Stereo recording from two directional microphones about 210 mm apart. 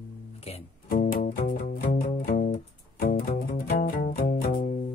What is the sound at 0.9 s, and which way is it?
Music, 45° left (ahead or behind).